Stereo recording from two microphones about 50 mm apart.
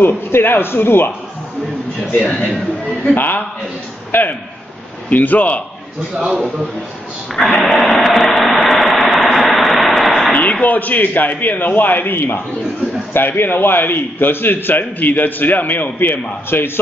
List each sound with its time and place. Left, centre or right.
0.0 s a man's voice: left
3.2 s a man's voice: left
7.3 s a sound: centre
8.6 s vehicle: centre
10.3 s a man's voice: left